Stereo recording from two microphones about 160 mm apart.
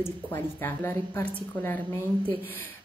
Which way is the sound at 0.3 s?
15° left (ahead or behind).